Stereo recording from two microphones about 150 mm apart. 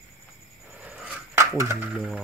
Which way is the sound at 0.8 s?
15° right (ahead or behind).